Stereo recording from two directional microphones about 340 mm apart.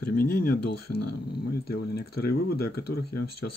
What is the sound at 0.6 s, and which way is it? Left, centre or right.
Speech, left.